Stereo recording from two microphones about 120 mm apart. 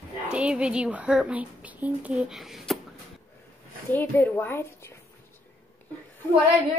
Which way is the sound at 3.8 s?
15° left (ahead or behind).